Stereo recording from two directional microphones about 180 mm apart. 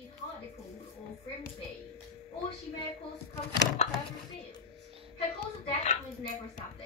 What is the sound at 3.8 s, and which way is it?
Speech, 35° left (ahead or behind).